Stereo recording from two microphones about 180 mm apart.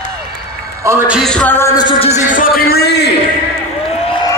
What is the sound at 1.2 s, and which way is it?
Music, 5° left (ahead or behind).